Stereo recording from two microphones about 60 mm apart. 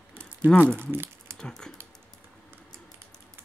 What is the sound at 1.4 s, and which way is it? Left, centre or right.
Speech, centre.